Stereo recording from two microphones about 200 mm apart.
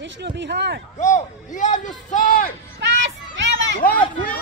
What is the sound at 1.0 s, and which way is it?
A man's voice, 35° left (ahead or behind).